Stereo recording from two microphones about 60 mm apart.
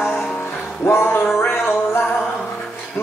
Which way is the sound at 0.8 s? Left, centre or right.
Left.